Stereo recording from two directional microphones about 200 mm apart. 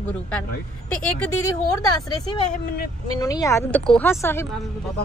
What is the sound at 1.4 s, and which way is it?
A woman's voice, 20° left (ahead or behind).